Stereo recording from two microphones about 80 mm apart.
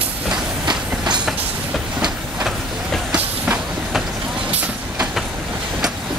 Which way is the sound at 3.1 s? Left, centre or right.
Centre.